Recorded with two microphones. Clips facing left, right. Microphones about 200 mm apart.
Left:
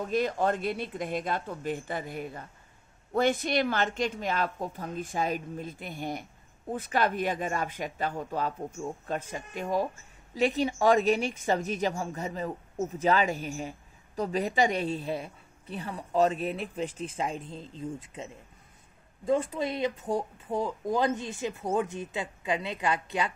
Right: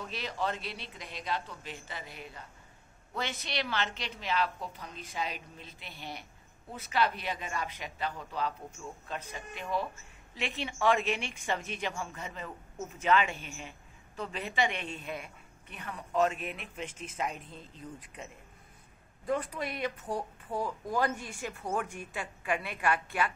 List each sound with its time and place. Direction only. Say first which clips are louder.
0.0 s a woman's voice: left 8 dB; 50° left (ahead or behind); by 23.3 s 20° left (ahead or behind)